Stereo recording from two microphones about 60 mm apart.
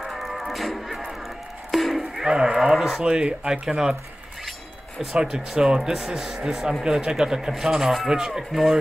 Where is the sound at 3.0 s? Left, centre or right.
Centre.